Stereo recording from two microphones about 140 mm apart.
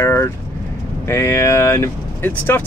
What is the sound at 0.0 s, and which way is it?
Vehicle, 20° left (ahead or behind).